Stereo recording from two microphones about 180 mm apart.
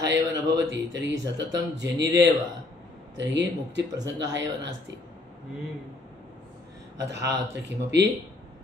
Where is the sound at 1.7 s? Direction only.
70° right (ahead or behind).